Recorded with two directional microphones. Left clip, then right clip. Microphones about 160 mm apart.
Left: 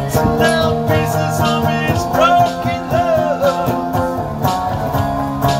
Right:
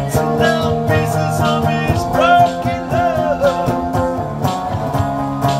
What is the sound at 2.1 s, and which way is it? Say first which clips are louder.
Music: right 1 dB; 10° left (ahead or behind).